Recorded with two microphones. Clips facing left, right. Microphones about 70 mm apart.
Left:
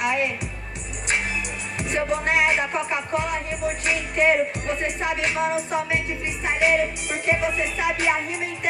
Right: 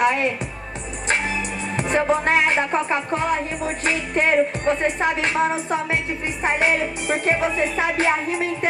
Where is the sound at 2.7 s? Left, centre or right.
Right.